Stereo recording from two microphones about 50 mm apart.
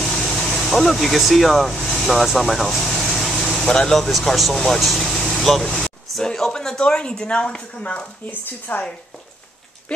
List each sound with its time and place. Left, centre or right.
0.0 s air conditioning: centre
2.0 s speech: centre
2.9 s vehicle: centre
3.5 s speech: centre
8.3 s speech: left